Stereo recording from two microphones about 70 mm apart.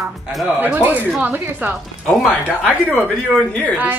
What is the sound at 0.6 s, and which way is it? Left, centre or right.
A woman's voice, right.